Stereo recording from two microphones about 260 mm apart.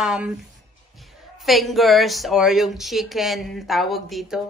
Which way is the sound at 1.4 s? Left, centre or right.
Centre.